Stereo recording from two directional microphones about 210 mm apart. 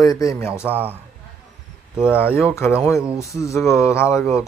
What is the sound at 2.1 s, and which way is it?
Speech, 10° left (ahead or behind).